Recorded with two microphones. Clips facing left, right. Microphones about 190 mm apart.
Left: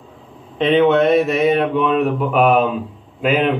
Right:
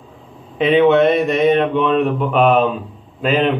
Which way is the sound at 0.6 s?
5° right (ahead or behind).